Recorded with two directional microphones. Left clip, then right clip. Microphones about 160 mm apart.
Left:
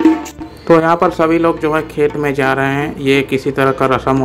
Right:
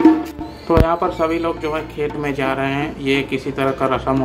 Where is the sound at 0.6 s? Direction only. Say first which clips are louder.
Left 6 dB; 30° left (ahead or behind).